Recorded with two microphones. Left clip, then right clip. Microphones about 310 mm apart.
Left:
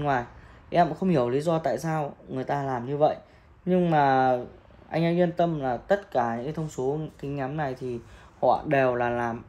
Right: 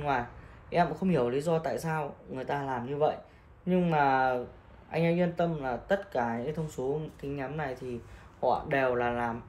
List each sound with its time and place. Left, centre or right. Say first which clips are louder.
0.7 s speech: left 5 dB; left